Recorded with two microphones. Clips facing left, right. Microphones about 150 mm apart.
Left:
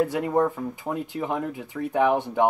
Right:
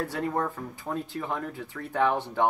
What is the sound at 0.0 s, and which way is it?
Speech, 15° left (ahead or behind).